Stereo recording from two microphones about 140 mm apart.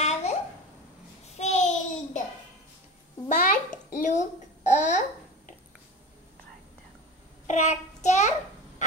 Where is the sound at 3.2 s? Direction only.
70° left (ahead or behind).